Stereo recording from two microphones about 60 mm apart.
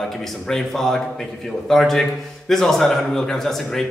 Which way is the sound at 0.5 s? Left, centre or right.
Centre.